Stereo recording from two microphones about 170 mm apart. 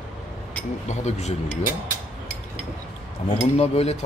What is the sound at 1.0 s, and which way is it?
Speech, 40° left (ahead or behind).